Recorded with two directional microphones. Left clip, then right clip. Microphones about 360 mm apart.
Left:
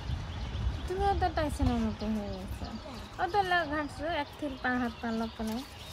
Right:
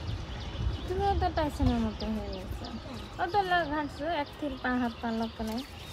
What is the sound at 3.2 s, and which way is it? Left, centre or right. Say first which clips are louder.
Speech: right 1 dB; left.